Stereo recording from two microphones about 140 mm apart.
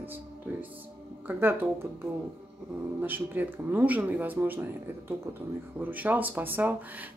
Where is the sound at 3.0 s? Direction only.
15° right (ahead or behind).